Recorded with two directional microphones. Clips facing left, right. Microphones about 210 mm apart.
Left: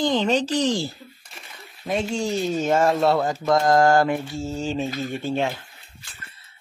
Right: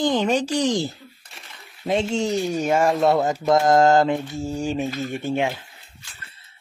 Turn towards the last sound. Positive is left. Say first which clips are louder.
# even
turn(degrees=-30)  # may be behind; listen again after turning